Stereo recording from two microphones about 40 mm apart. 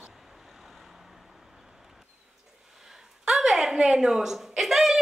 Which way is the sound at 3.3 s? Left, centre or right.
Centre.